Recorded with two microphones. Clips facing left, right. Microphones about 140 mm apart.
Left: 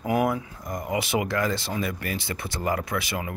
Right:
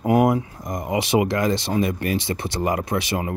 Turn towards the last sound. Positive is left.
turn(degrees=-25)  # may be behind; listen again after turning